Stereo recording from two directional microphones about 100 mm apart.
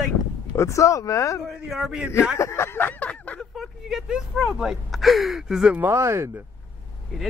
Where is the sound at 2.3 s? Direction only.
30° left (ahead or behind).